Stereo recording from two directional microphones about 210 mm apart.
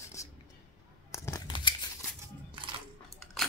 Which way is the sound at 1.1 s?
15° left (ahead or behind).